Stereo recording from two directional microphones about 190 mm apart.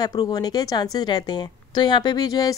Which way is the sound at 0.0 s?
20° left (ahead or behind).